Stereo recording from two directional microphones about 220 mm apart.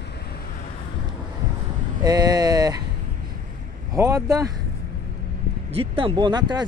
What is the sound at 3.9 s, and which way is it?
Speech, 15° right (ahead or behind).